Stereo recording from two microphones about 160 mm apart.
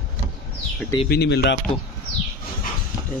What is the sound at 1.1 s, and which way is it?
Speech, 90° left.